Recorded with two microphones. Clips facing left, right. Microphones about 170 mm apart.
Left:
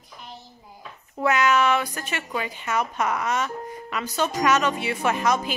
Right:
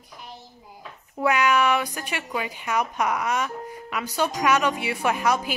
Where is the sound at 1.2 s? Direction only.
10° right (ahead or behind).